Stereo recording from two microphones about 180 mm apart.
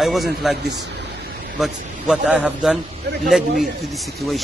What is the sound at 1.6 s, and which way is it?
A man's voice, centre (ahead or behind).